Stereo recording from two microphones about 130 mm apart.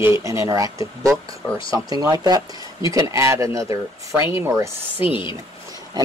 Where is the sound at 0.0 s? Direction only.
20° right (ahead or behind).